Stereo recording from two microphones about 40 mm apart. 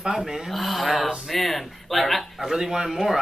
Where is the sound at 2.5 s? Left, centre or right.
Centre.